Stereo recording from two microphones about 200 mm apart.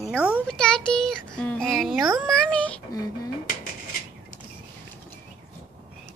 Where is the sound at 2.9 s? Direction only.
20° left (ahead or behind).